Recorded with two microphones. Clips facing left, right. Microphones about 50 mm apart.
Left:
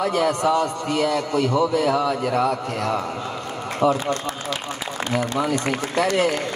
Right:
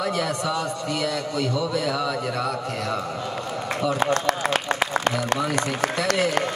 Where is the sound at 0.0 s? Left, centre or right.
Left.